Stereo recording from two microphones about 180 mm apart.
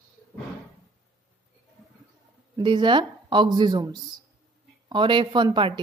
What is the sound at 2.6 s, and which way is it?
A woman's voice, 25° right (ahead or behind).